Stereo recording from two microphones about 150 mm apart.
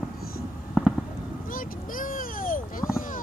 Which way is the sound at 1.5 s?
65° left (ahead or behind).